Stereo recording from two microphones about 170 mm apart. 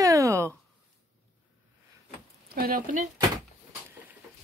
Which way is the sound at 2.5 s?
60° right (ahead or behind).